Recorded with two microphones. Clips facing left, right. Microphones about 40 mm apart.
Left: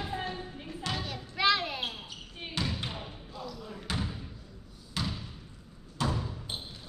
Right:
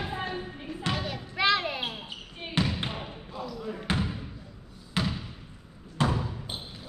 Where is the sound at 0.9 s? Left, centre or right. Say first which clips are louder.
Right 4 dB; centre.